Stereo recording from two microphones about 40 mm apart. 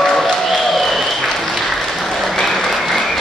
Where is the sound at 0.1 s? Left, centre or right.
Centre.